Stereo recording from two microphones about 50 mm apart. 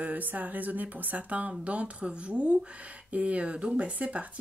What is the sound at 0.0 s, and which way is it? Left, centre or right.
Speech, right.